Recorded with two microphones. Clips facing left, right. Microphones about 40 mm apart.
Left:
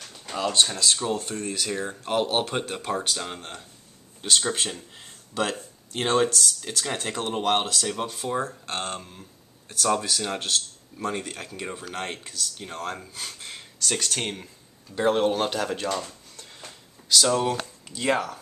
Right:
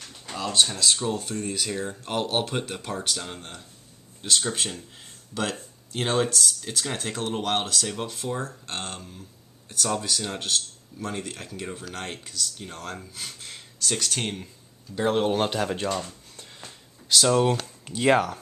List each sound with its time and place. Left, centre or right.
0.3 s speech: centre
13.9 s speech: centre
15.3 s speech: centre
17.2 s speech: centre
17.8 s speech: right